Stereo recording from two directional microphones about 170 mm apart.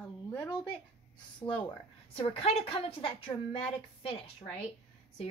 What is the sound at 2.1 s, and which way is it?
A woman's voice, 35° left (ahead or behind).